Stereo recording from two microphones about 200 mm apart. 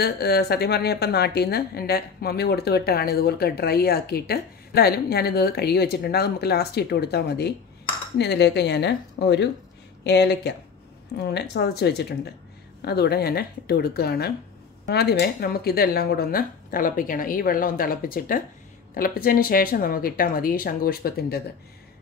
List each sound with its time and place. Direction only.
0.0 s a woman's voice: 55° left (ahead or behind)